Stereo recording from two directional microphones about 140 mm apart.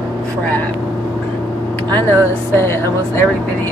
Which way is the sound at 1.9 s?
15° left (ahead or behind).